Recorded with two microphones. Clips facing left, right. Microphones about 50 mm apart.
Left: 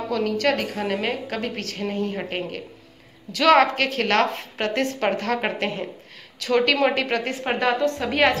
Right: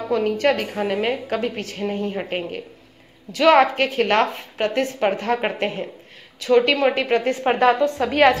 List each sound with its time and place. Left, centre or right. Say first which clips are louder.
0.1 s a woman's voice: right 3 dB; right
7.5 s a woman's voice: right 3 dB; right
8.0 s a woman's voice: right 5 dB; centre